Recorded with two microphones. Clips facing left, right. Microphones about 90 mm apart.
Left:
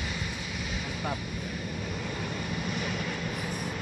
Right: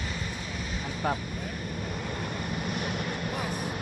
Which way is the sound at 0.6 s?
40° right (ahead or behind).